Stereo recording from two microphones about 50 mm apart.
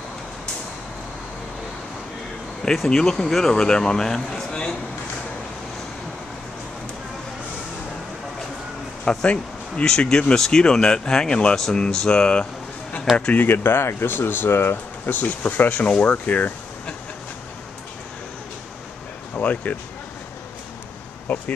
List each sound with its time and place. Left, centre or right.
2.8 s speech: centre
9.0 s speech: centre
13.3 s speech: left
15.1 s speech: left
19.3 s speech: left
21.3 s speech: left